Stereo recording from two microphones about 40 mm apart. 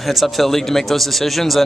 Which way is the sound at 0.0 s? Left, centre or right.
Centre.